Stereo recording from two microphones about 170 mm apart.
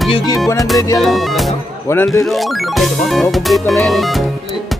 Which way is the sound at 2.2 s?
Centre (ahead or behind).